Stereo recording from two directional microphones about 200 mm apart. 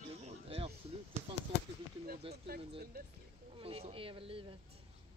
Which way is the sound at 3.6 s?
30° right (ahead or behind).